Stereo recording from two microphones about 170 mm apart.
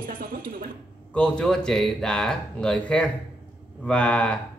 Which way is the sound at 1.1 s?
5° left (ahead or behind).